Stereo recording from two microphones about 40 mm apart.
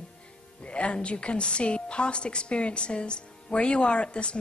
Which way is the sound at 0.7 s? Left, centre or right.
Left.